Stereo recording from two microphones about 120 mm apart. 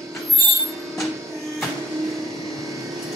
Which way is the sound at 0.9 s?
Centre (ahead or behind).